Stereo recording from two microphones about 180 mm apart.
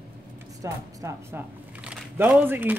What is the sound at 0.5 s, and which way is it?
Speech, 15° right (ahead or behind).